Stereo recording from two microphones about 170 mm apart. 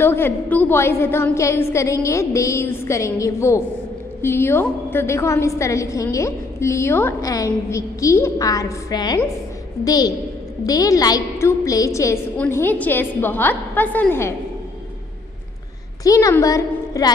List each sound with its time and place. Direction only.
0.0 s a woman's voice: 10° left (ahead or behind)
16.0 s a woman's voice: 20° left (ahead or behind)